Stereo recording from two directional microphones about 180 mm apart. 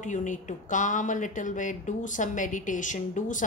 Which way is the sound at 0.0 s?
45° left (ahead or behind).